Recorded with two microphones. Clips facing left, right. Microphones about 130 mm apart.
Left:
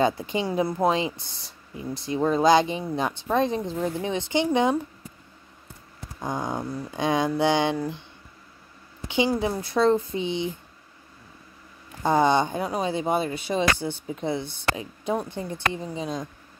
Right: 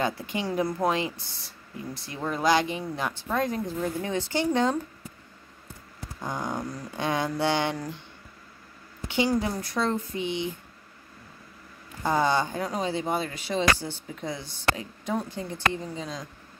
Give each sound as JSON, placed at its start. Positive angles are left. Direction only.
{"t": 0.0, "sound": "speech", "side_deg": 20}
{"t": 6.1, "sound": "speech", "side_deg": 20}
{"t": 9.0, "sound": "speech", "side_deg": 15}
{"t": 12.0, "sound": "speech", "side_deg": 20}
{"t": 14.4, "sound": "speech", "side_deg": 55}
{"t": 14.8, "sound": "speech", "side_deg": 20}